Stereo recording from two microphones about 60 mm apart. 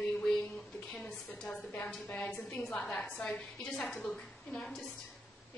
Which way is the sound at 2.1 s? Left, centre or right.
Left.